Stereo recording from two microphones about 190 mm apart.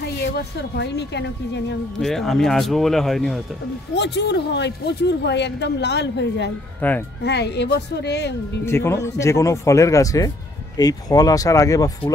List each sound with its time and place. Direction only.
0.0 s speech: 60° left (ahead or behind)
2.0 s speech: centre (ahead or behind)
3.9 s speech: 65° left (ahead or behind)
6.8 s speech: 10° left (ahead or behind)
7.2 s speech: 60° left (ahead or behind)
8.6 s speech: 15° left (ahead or behind)